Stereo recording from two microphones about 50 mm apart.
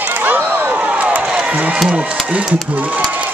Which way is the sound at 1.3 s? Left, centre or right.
Centre.